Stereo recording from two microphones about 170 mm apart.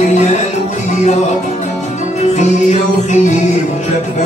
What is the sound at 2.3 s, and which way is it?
Music, 45° left (ahead or behind).